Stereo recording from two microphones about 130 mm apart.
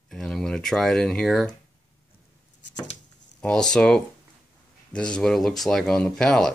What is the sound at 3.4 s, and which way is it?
Speech, 5° left (ahead or behind).